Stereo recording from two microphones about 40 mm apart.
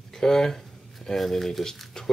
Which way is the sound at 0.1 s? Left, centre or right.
Centre.